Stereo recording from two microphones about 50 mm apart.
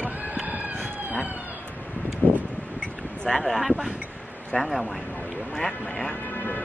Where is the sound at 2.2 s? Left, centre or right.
Left.